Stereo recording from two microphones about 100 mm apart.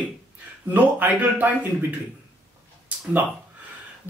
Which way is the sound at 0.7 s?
15° right (ahead or behind).